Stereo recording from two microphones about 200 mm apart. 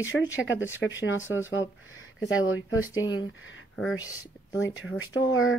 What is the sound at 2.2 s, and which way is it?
Speech, 90° left.